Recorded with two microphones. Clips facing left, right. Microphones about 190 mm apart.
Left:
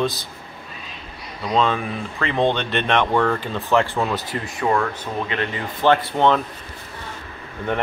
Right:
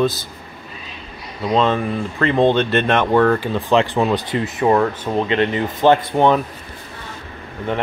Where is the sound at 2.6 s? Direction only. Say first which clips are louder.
Right 7 dB; 45° right (ahead or behind).